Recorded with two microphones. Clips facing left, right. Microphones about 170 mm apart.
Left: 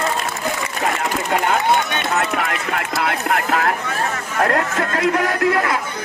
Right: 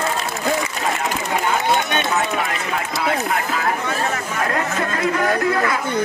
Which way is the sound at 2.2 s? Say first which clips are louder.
Left 1 dB; 65° left (ahead or behind).